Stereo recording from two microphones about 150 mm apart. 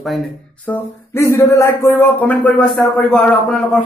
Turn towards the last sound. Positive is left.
turn(degrees=5)  # may be behind; listen again after turning